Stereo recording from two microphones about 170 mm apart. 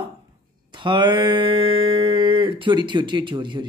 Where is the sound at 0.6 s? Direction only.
25° right (ahead or behind).